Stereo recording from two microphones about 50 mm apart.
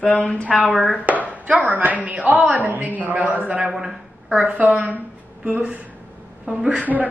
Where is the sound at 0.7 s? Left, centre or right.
Centre.